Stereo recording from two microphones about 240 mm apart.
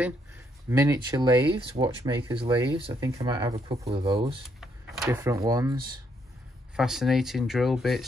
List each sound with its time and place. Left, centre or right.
0.7 s speech: centre
4.6 s drawer open or close: centre
5.1 s speech: centre
6.8 s speech: centre